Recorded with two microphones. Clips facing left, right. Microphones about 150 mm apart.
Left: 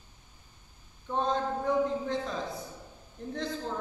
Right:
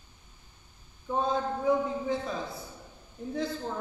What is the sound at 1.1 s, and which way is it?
A man's voice, 5° right (ahead or behind).